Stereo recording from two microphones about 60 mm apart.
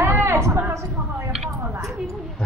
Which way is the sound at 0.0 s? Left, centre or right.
Right.